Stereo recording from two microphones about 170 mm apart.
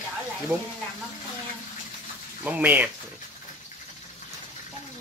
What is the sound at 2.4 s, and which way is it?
Speech, 10° right (ahead or behind).